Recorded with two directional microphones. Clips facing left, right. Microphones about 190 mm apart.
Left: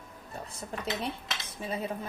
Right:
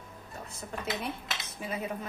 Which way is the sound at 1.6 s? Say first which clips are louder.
Left 2 dB; 30° left (ahead or behind).